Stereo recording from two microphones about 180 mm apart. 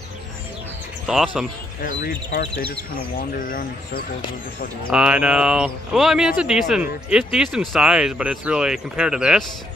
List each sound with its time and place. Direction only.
1.0 s speech: centre (ahead or behind)
1.8 s speech: 55° left (ahead or behind)
4.9 s speech: 5° right (ahead or behind)